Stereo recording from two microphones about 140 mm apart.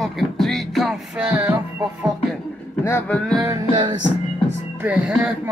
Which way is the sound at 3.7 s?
35° right (ahead or behind).